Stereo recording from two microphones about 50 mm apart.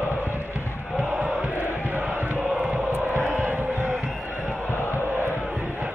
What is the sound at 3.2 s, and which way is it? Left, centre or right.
Crowd, right.